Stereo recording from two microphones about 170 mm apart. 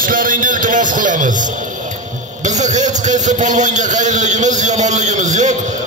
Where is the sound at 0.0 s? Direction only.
55° right (ahead or behind).